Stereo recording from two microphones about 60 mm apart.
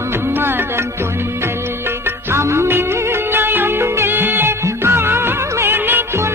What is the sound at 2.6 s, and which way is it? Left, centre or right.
Music, right.